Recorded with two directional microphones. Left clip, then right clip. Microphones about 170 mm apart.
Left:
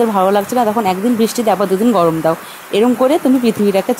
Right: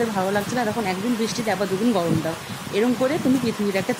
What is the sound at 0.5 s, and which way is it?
Speech, 30° left (ahead or behind).